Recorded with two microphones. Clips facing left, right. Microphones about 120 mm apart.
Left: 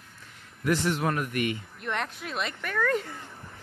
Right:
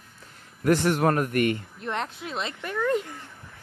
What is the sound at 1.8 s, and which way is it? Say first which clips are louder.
Speech: right 1 dB; 30° right (ahead or behind).